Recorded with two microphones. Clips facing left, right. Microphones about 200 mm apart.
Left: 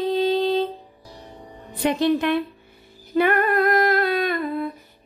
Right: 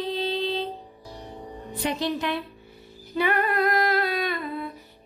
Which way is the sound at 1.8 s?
55° left (ahead or behind).